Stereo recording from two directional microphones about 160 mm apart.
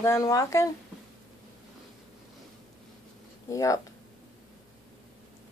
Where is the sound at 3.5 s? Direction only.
20° left (ahead or behind).